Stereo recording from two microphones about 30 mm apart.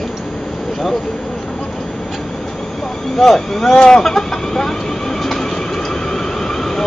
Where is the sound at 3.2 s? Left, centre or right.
Centre.